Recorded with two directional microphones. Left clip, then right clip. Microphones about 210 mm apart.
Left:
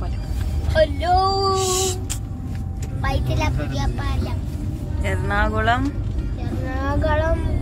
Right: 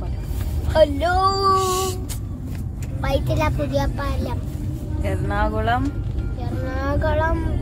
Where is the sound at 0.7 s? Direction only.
50° right (ahead or behind).